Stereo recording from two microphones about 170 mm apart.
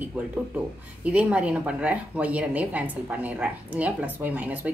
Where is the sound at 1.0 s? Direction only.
5° right (ahead or behind).